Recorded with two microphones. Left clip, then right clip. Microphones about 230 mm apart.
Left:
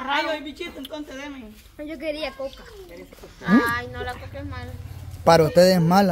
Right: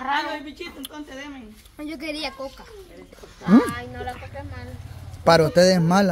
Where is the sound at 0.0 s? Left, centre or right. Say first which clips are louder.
Even; centre.